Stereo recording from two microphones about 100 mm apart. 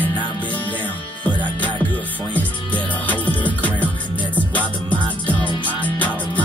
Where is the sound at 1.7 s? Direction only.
55° right (ahead or behind).